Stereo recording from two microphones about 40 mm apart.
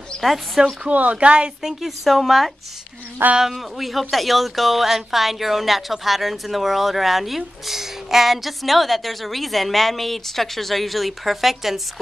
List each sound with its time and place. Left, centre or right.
0.1 s a sound: left
0.8 s speech: right
1.1 s speech: right
1.6 s speech: centre